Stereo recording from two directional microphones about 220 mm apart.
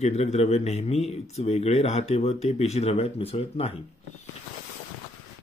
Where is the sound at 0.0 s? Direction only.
30° left (ahead or behind).